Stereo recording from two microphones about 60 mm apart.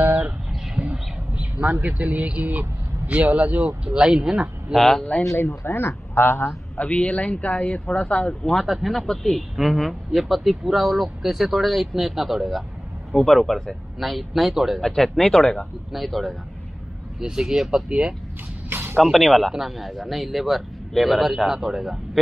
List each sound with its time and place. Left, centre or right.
0.0 s a sound: right
1.6 s speech: right
4.7 s speech: centre
5.7 s speech: left
6.8 s speech: left
8.6 s speech: centre
18.7 s music: right
18.9 s speech: centre